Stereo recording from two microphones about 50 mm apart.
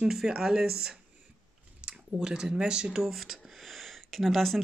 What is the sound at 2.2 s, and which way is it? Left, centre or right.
Speech, centre.